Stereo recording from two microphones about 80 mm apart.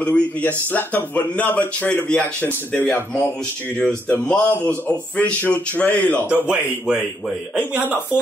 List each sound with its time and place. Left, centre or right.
0.0 s speech: centre
4.3 s speech: centre
6.2 s speech: centre